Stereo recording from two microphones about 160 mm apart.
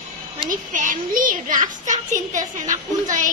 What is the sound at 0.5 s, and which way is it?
Speech, 55° right (ahead or behind).